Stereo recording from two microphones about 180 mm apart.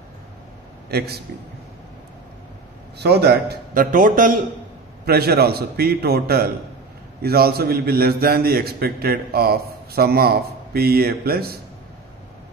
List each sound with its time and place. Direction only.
0.8 s a man's voice: 60° right (ahead or behind)
3.0 s a man's voice: 65° right (ahead or behind); by 4.4 s 50° right (ahead or behind)
5.0 s a man's voice: 60° right (ahead or behind)